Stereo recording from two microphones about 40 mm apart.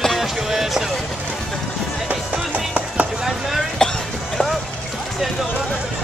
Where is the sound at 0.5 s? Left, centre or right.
Centre.